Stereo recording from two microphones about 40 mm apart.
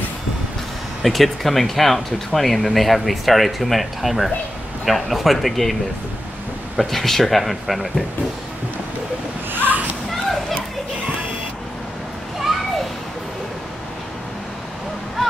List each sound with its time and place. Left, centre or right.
1.0 s speech: centre
6.8 s speech: centre
9.5 s a sound: right